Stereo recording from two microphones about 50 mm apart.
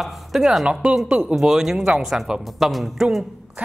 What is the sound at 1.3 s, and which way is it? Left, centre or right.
Speech, centre.